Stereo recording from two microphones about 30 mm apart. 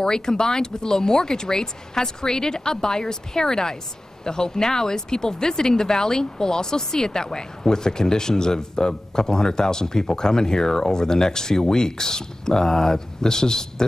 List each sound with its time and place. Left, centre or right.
0.0 s speech: left